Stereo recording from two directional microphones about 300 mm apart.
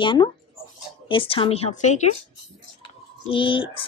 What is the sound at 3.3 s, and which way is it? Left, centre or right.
Speech, centre.